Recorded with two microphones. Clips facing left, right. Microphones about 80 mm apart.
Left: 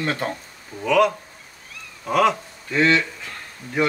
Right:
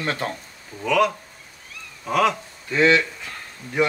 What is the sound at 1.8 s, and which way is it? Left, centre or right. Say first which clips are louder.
Cat: left 1 dB; centre.